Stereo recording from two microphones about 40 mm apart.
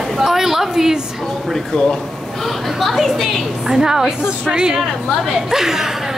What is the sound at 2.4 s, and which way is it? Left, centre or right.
A woman's voice, centre.